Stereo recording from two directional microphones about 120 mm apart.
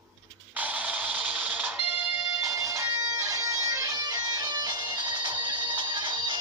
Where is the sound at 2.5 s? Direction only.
25° right (ahead or behind).